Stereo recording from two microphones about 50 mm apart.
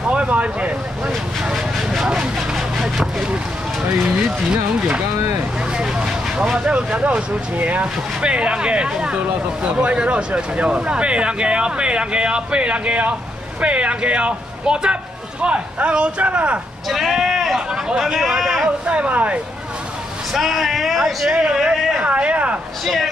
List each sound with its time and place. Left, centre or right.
0.1 s speech: right
1.5 s a sound: centre
2.0 s speech: centre
3.9 s speech: centre
16.9 s speech: centre
18.9 s speech: right
20.3 s speech: centre
21.3 s speech: centre